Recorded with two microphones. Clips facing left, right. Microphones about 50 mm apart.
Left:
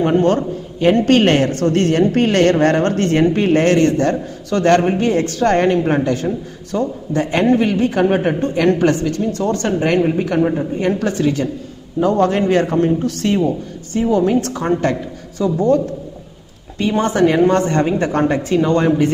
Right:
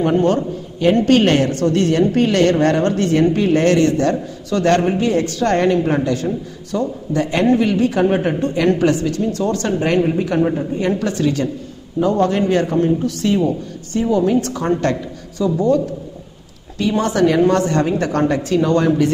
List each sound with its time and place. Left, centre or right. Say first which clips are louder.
0.2 s a man's voice: left 1 dB; left
14.7 s speech: left 1 dB; left
15.3 s a man's voice: left 1 dB; left